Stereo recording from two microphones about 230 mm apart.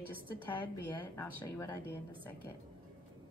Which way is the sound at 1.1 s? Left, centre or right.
Centre.